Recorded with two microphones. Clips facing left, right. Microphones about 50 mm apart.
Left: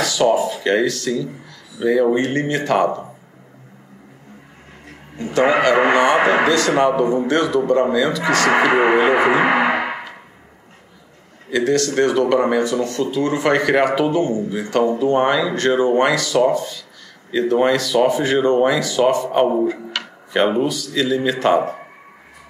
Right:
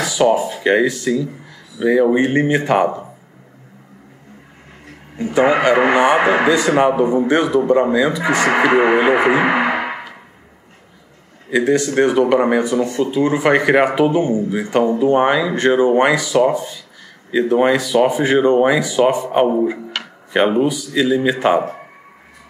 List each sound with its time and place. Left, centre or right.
0.0 s speech: centre
5.1 s speech: centre
9.8 s a sound: right
11.5 s speech: centre